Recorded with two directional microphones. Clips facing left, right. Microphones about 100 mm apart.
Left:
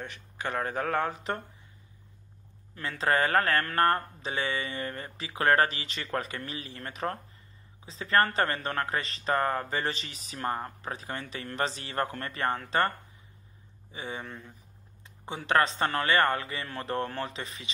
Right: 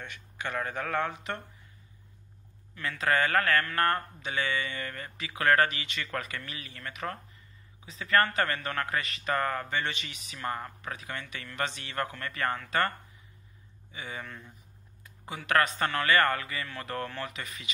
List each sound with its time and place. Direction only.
0.0 s speech: 35° left (ahead or behind)
2.7 s speech: 30° left (ahead or behind)
13.9 s speech: 30° left (ahead or behind)